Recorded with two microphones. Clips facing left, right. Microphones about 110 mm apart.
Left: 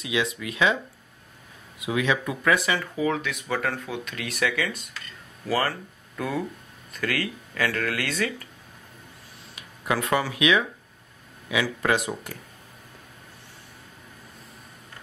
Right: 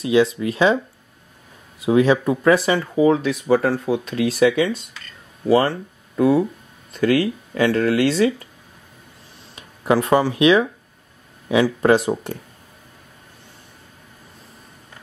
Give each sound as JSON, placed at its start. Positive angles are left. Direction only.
{"t": 0.0, "sound": "speech", "side_deg": -35}
{"t": 1.8, "sound": "speech", "side_deg": -35}
{"t": 9.6, "sound": "speech", "side_deg": -35}